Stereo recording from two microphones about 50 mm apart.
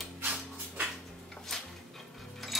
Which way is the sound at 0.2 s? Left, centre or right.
Right.